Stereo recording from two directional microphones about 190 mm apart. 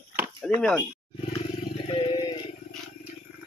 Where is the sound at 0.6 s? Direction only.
5° left (ahead or behind).